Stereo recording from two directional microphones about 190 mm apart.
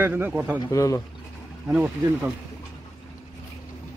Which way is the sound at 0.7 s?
15° left (ahead or behind).